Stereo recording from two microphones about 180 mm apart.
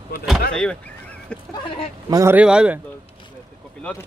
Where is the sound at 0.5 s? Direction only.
5° left (ahead or behind).